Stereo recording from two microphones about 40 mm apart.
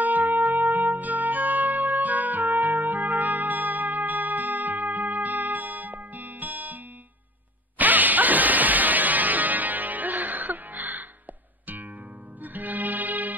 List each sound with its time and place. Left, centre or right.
0.0 s music: right
12.5 s music: right